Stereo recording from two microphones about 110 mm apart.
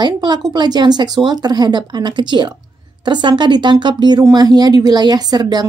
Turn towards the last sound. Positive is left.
turn(degrees=-40)  # may be behind; listen again after turning